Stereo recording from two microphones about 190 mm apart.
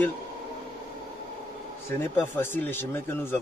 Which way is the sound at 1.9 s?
10° left (ahead or behind).